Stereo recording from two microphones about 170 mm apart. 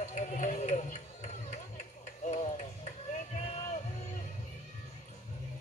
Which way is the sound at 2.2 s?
40° left (ahead or behind).